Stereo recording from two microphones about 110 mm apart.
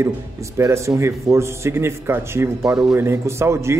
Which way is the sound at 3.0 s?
25° right (ahead or behind).